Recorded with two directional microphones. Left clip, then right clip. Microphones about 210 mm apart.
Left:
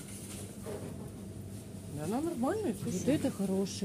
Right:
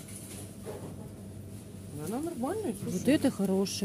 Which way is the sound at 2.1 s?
30° left (ahead or behind).